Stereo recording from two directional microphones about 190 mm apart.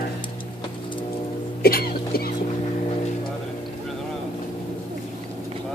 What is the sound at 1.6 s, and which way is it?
Music, 55° left (ahead or behind).